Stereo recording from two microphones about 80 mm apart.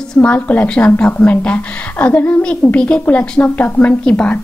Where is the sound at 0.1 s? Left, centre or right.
Centre.